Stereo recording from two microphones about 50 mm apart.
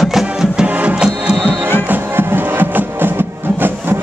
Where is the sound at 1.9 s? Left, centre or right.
Right.